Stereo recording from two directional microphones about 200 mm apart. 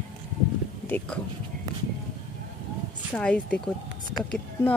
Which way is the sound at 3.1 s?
5° left (ahead or behind).